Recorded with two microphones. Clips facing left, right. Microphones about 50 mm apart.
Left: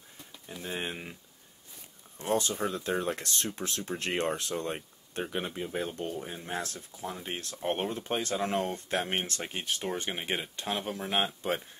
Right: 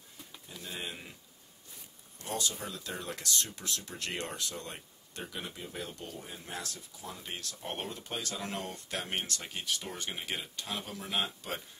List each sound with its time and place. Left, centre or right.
0.5 s speech: left
2.1 s speech: left